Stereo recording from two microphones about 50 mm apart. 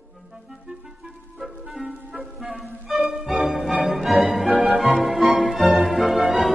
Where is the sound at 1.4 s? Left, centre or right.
Centre.